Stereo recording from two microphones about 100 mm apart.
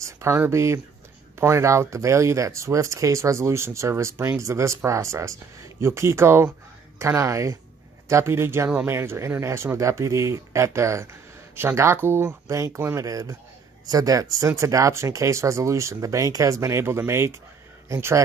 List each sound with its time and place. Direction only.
0.0 s speech: 30° right (ahead or behind)